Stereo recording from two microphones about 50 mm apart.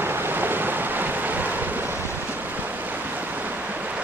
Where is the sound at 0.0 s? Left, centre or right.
Right.